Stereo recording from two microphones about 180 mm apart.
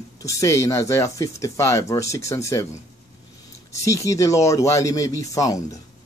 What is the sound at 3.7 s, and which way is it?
Speech, 15° left (ahead or behind).